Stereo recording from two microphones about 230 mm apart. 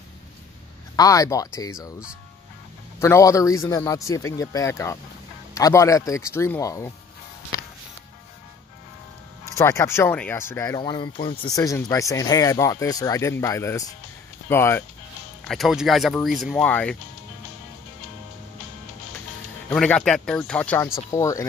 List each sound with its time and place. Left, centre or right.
0.9 s speech: centre
1.8 s speech: centre
3.0 s speech: centre
9.6 s speech: centre
15.4 s speech: centre
19.7 s speech: centre